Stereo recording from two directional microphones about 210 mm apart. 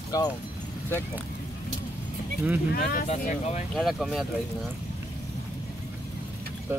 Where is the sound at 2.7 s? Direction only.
40° left (ahead or behind).